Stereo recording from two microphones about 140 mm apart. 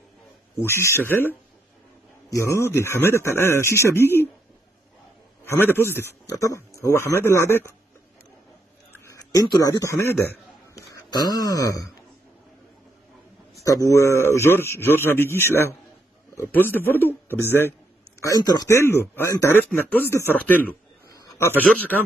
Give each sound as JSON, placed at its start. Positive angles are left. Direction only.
{"t": 0.6, "sound": "a man's voice", "side_deg": 15}
{"t": 5.4, "sound": "a man's voice", "side_deg": 15}
{"t": 8.9, "sound": "a man's voice", "side_deg": 25}
{"t": 10.7, "sound": "a sound", "side_deg": 25}
{"t": 13.6, "sound": "a man's voice", "side_deg": 25}
{"t": 18.2, "sound": "a man's voice", "side_deg": 25}
{"t": 21.7, "sound": "a man's voice", "side_deg": 10}